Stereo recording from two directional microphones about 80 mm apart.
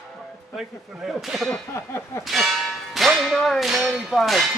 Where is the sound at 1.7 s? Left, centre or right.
Left.